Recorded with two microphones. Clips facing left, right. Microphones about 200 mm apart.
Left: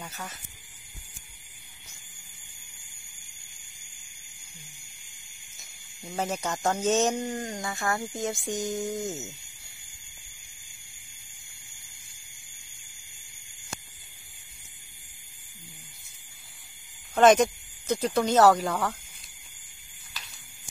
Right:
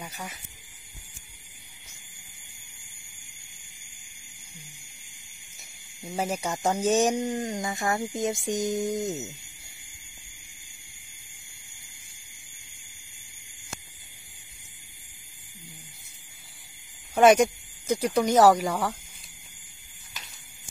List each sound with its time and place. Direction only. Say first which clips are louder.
0.0 s speech: right 1 dB; 10° right (ahead or behind)
6.0 s speech: right 1 dB; 10° right (ahead or behind)
8.5 s a sound: right 3 dB; 20° right (ahead or behind)
17.1 s speech: right 1 dB; 10° right (ahead or behind)